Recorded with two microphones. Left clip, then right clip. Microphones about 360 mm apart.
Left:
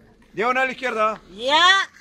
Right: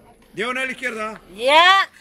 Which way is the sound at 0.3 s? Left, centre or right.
Centre.